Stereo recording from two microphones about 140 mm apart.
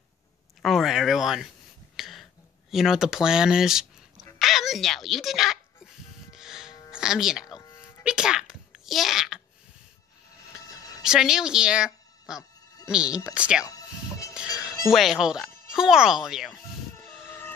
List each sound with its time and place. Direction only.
0.6 s speech: centre (ahead or behind)
2.0 s a sound: centre (ahead or behind)
2.7 s speech: 5° right (ahead or behind)
4.4 s a sound: centre (ahead or behind)
6.3 s music: 5° right (ahead or behind)
6.9 s a sound: 5° right (ahead or behind)
11.0 s speech: 5° right (ahead or behind)
13.7 s music: 25° left (ahead or behind)
14.9 s speech: centre (ahead or behind)
16.9 s music: 15° left (ahead or behind)